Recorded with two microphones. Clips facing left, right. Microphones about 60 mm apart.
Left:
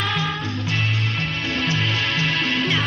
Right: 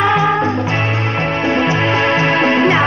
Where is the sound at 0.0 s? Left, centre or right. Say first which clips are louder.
Right 11 dB; right.